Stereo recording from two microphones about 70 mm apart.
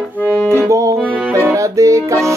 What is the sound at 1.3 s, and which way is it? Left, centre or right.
Music, right.